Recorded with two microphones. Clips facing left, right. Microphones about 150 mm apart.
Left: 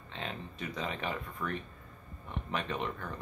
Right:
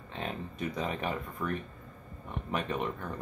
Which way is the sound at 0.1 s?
45° right (ahead or behind).